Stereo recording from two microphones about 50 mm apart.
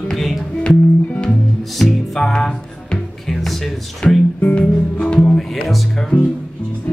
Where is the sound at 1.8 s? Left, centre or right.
Centre.